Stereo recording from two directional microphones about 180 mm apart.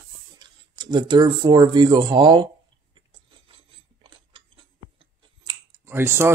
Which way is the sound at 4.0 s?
30° right (ahead or behind).